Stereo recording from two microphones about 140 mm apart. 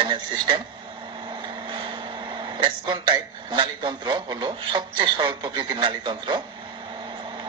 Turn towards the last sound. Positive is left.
turn(degrees=-35)  # may be behind; listen again after turning